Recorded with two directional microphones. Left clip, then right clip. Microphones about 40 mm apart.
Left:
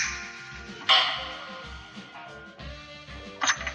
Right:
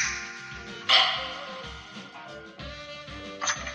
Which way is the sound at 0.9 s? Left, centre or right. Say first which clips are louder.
Even; left.